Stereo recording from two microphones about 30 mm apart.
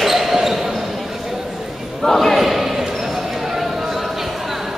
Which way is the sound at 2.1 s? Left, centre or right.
Centre.